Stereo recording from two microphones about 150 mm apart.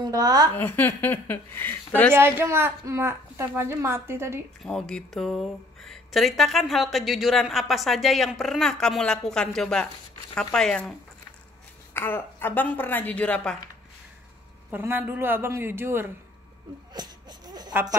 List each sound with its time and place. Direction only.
0.0 s a woman's voice: 25° right (ahead or behind)
0.6 s a woman's voice: 15° left (ahead or behind)
2.1 s a woman's voice: 15° right (ahead or behind)
4.6 s a woman's voice: 5° left (ahead or behind)
14.7 s a woman's voice: 15° right (ahead or behind)
16.9 s a sound: 25° right (ahead or behind)